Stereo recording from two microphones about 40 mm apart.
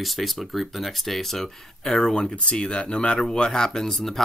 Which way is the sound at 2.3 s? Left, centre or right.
Left.